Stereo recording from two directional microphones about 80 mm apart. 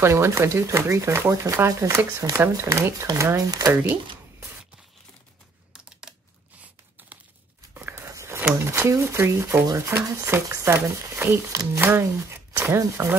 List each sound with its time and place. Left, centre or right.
0.0 s speech: right
5.7 s computer keyboard: centre
7.9 s a sound: right
8.4 s a sound: right
8.6 s speech: right
11.4 s speech: right
11.8 s speech: right